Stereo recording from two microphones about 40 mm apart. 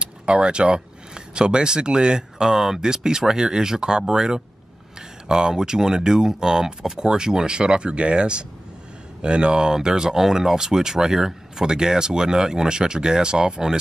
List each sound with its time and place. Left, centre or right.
0.0 s speech: right